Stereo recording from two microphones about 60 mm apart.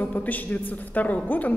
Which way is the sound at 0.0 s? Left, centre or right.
Left.